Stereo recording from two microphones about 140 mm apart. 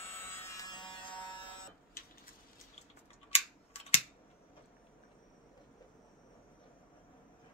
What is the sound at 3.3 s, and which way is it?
Scissors, 45° left (ahead or behind).